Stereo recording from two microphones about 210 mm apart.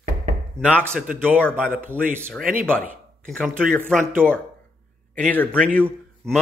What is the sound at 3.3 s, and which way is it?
Speech, 5° left (ahead or behind).